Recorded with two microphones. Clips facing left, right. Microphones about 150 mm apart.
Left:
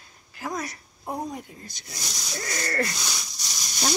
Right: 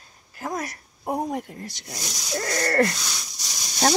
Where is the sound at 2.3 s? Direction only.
50° right (ahead or behind).